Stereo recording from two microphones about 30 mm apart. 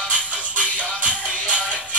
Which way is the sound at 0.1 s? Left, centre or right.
Right.